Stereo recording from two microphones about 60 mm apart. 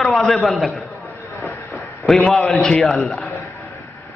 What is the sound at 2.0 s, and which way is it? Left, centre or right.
A man's voice, centre.